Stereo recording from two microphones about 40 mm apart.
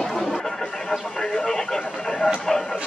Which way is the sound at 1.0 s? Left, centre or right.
Centre.